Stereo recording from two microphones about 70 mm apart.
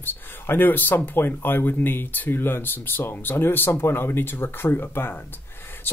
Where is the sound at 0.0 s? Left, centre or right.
Left.